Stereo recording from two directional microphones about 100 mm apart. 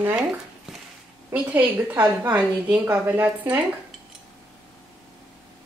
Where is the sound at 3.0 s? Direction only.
20° right (ahead or behind).